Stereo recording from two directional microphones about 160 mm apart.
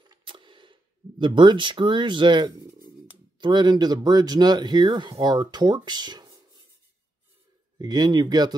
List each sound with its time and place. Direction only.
0.0 s a sound: 30° right (ahead or behind)
3.3 s speech: 30° right (ahead or behind)
7.8 s speech: 25° right (ahead or behind)